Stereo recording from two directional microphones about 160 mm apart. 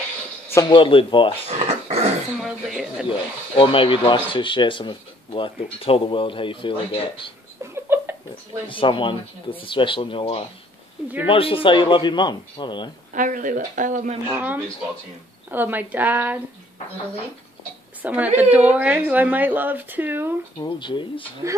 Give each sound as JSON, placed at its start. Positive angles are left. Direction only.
{"t": 0.7, "sound": "speech", "side_deg": 30}
{"t": 1.5, "sound": "a sound", "side_deg": -45}
{"t": 2.4, "sound": "speech", "side_deg": -5}
{"t": 3.1, "sound": "speech", "side_deg": 35}
{"t": 7.6, "sound": "a sound", "side_deg": -15}
{"t": 8.6, "sound": "a man's voice", "side_deg": 30}
{"t": 13.1, "sound": "speech", "side_deg": -55}
{"t": 14.2, "sound": "a woman's voice", "side_deg": -10}
{"t": 18.0, "sound": "a woman's voice", "side_deg": -10}
{"t": 20.6, "sound": "a man's voice", "side_deg": 30}
{"t": 21.4, "sound": "a woman's voice", "side_deg": -15}